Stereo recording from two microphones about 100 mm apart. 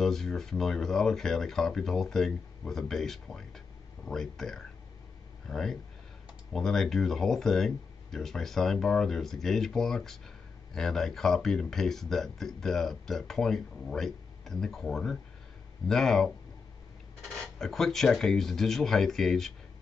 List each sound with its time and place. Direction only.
0.0 s speech: 5° left (ahead or behind)